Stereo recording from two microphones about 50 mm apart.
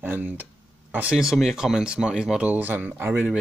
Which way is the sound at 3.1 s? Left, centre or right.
Right.